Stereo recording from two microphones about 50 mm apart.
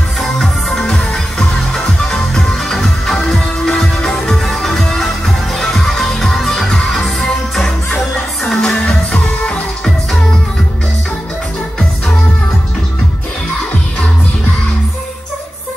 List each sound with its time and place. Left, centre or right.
0.2 s music: centre
8.6 s music: left